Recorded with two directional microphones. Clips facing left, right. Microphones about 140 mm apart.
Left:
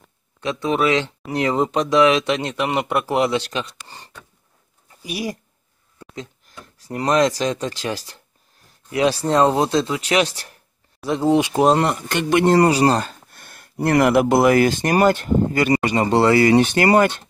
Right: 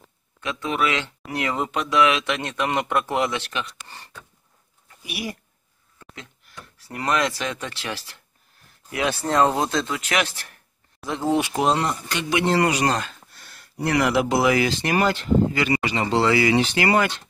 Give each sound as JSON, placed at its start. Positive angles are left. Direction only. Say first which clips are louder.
{"t": 0.4, "sound": "speech", "louder": "left 5 dB", "side_deg": 30}
{"t": 2.9, "sound": "speech", "louder": "left 2 dB", "side_deg": 10}
{"t": 3.2, "sound": "speech", "louder": "left 5 dB", "side_deg": 30}
{"t": 7.1, "sound": "speech", "louder": "left 6 dB", "side_deg": 40}
{"t": 11.0, "sound": "speech", "louder": "left 5 dB", "side_deg": 15}
{"t": 11.8, "sound": "speech", "louder": "left 5 dB", "side_deg": 60}
{"t": 13.3, "sound": "speech", "louder": "left 3 dB", "side_deg": 55}